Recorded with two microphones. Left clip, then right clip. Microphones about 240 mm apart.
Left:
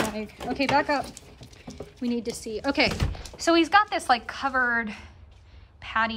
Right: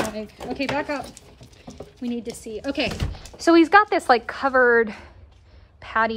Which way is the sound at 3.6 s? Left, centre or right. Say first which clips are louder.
Right 5 dB; centre.